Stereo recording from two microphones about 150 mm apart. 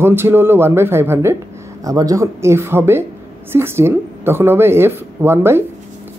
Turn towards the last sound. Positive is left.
turn(degrees=-15)  # may be behind; listen again after turning